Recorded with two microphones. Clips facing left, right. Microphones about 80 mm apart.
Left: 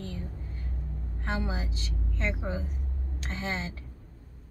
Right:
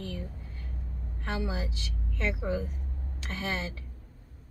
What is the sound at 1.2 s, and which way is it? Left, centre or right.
A woman's voice, left.